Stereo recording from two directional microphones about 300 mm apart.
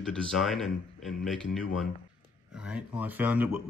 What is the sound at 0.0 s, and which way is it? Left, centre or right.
Speech, centre.